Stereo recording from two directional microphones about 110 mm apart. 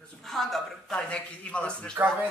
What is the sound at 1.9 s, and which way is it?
Speech, 15° right (ahead or behind).